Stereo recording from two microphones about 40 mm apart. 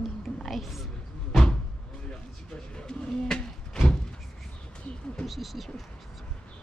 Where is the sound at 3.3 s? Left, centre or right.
Centre.